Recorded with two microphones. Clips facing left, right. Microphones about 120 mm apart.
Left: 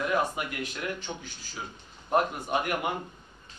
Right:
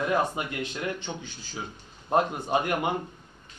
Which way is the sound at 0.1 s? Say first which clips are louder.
Right 2 dB; 25° right (ahead or behind).